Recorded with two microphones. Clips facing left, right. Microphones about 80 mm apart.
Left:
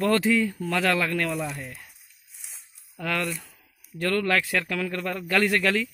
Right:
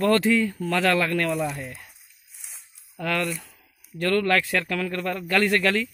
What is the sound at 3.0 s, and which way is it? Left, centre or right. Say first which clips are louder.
A man's voice: right 2 dB; centre.